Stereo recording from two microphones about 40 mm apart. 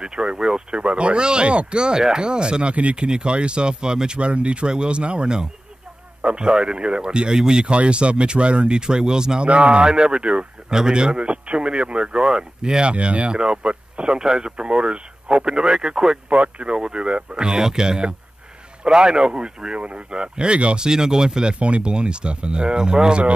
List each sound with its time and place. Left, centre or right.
0.0 s speech: right
0.7 s speech: right
12.9 s speech: right
16.3 s speech: right
21.5 s speech: right